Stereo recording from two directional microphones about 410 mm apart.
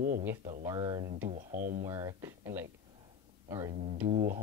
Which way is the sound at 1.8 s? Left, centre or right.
Centre.